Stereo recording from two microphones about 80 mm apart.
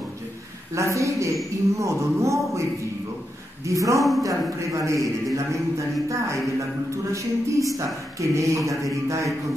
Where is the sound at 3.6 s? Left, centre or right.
Right.